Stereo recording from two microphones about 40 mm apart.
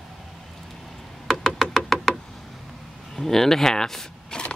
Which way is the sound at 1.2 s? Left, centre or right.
Centre.